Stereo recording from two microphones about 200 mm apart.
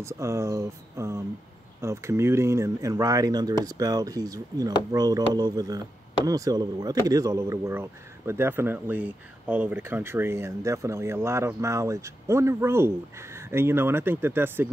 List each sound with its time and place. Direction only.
0.0 s speech: 15° right (ahead or behind)